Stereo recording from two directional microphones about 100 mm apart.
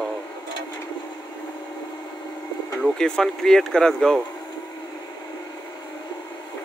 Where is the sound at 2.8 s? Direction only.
5° left (ahead or behind).